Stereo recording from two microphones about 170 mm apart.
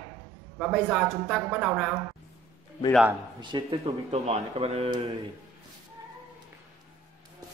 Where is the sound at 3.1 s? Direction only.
25° right (ahead or behind).